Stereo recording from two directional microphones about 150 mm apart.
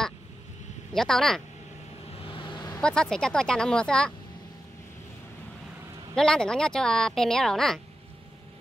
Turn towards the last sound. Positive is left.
turn(degrees=0)  # may be behind; listen again after turning